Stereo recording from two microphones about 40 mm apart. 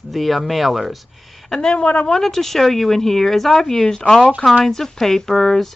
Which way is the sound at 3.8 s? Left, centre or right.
Centre.